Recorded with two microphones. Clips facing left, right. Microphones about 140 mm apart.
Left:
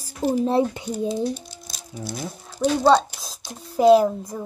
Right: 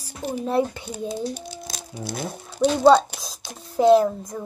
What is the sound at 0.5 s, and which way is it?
Speech, 20° left (ahead or behind).